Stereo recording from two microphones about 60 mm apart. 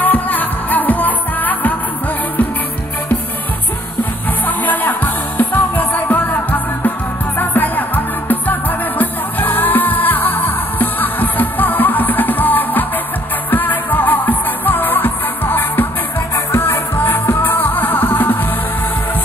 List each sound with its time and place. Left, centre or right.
0.0 s music: left
4.5 s music: left